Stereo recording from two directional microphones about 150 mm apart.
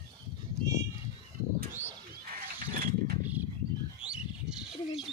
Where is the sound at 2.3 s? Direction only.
70° right (ahead or behind).